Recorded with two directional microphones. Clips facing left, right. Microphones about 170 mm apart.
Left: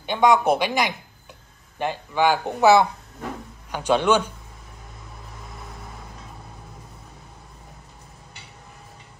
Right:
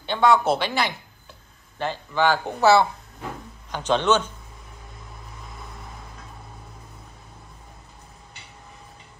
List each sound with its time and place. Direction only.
0.0 s speech: 15° left (ahead or behind)